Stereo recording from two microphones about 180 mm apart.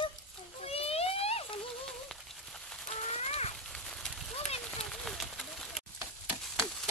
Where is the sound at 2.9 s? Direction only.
35° left (ahead or behind).